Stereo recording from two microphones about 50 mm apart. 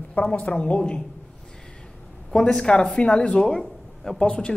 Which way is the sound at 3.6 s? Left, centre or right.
Centre.